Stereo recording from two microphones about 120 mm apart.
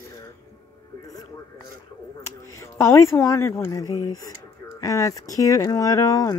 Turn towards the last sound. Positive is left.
turn(degrees=30)  # may be behind; listen again after turning